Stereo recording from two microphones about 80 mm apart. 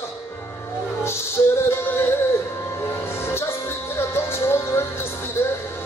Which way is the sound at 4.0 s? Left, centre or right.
Left.